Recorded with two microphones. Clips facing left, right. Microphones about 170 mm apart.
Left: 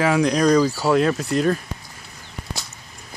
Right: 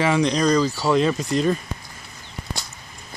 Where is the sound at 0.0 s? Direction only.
5° left (ahead or behind).